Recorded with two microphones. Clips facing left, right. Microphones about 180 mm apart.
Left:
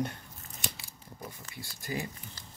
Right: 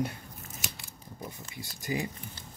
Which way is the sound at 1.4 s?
20° right (ahead or behind).